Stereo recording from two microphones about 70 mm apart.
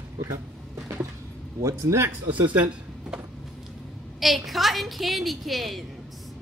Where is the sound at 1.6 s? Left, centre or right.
Right.